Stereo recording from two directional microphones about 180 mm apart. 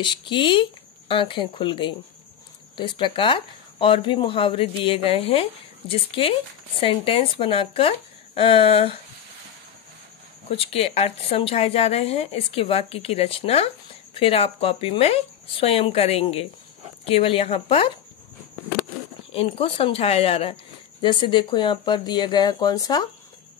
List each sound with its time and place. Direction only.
0.0 s speech: 25° left (ahead or behind)
10.5 s speech: 30° left (ahead or behind)
19.3 s speech: 30° left (ahead or behind)